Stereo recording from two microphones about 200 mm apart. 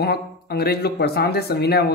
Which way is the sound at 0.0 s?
55° left (ahead or behind).